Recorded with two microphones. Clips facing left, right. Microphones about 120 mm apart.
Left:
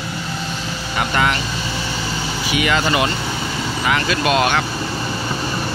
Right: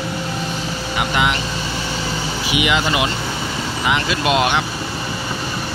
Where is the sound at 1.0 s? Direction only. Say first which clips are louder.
Left 1 dB; 15° right (ahead or behind).